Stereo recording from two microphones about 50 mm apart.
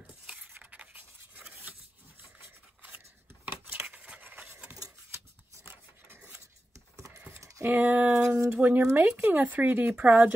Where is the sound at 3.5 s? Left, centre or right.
Right.